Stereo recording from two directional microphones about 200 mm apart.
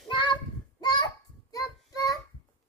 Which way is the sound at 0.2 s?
20° left (ahead or behind).